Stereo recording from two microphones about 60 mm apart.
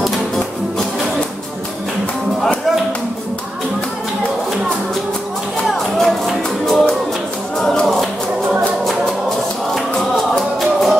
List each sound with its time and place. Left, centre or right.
5.7 s music: centre
7.5 s a sound: centre
9.9 s music: centre